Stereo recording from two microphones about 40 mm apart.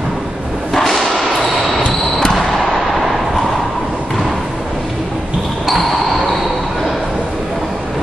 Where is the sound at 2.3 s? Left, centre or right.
Centre.